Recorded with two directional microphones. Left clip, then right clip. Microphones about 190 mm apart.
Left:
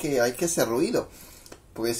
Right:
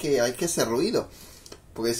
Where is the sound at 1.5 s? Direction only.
5° left (ahead or behind).